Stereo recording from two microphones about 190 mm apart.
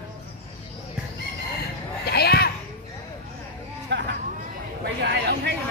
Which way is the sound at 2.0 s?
55° left (ahead or behind).